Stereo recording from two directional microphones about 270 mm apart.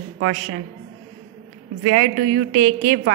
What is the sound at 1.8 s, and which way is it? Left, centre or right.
A woman's voice, right.